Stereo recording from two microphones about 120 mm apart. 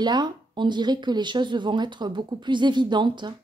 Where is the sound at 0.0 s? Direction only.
35° right (ahead or behind).